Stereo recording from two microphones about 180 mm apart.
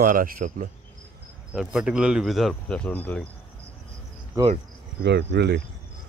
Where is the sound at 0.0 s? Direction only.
50° right (ahead or behind).